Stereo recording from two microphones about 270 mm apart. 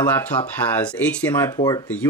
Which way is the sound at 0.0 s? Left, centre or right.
Centre.